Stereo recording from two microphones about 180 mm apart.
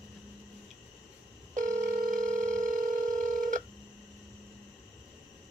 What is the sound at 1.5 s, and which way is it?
Telephone, 45° right (ahead or behind).